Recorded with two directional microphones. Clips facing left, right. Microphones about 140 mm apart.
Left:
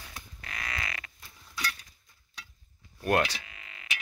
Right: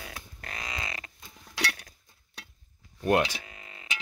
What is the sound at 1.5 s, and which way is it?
Cutlery, 70° right (ahead or behind).